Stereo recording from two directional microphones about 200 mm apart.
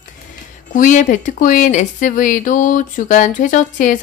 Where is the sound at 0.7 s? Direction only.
40° left (ahead or behind).